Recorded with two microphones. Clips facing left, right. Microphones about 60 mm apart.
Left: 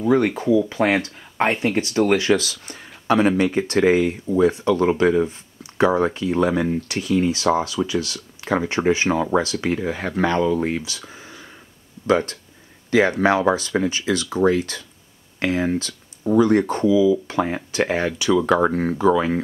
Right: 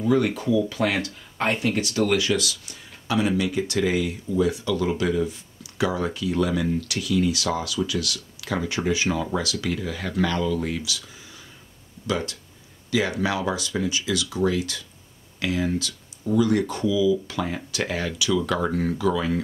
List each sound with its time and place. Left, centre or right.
0.0 s speech: left